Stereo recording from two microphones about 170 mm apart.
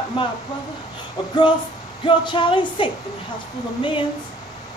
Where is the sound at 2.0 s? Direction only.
30° left (ahead or behind).